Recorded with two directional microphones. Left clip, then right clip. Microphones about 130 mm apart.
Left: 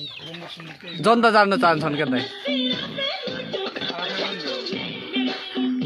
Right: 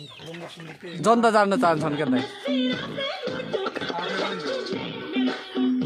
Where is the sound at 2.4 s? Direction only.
25° right (ahead or behind).